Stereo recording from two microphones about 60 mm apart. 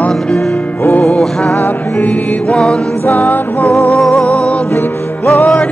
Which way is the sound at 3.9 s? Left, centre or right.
Centre.